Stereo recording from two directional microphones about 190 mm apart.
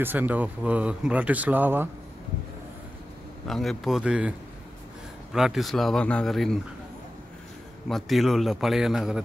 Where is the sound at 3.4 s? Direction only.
Centre (ahead or behind).